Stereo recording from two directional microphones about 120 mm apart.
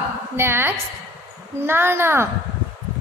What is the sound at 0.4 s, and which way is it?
A child's voice, 20° right (ahead or behind).